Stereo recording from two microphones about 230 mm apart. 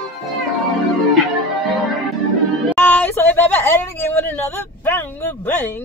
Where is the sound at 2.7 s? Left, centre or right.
Centre.